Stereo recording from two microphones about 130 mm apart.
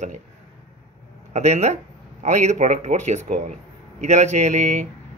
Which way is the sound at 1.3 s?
60° right (ahead or behind).